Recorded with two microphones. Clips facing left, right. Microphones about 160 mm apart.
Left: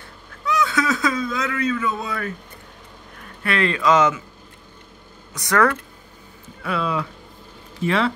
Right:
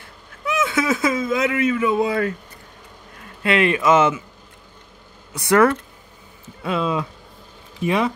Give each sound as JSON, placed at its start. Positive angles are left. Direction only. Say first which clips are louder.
{"t": 0.6, "sound": "speech", "louder": "right 1 dB", "side_deg": -20}
{"t": 3.4, "sound": "a man's voice", "louder": "right 2 dB", "side_deg": -20}
{"t": 5.3, "sound": "a man's voice", "louder": "right 4 dB", "side_deg": -25}